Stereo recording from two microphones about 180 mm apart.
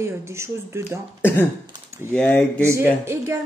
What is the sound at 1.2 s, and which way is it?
Speech, 10° left (ahead or behind).